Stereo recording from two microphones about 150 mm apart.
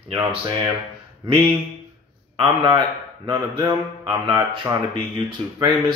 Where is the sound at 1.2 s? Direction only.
35° right (ahead or behind).